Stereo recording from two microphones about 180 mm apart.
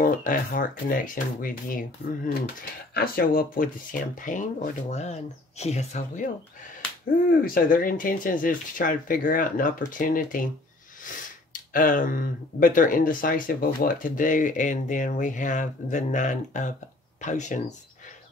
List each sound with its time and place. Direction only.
0.0 s speech: 50° left (ahead or behind)
7.2 s speech: 50° left (ahead or behind)
11.7 s speech: 50° left (ahead or behind)